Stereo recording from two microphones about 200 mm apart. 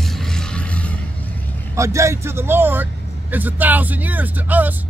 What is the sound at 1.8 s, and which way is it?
Speech, 15° right (ahead or behind).